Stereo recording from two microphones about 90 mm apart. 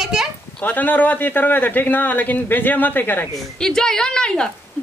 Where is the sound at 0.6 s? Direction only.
20° left (ahead or behind).